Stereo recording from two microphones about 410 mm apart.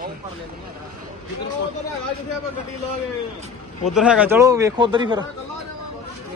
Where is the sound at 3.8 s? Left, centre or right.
Centre.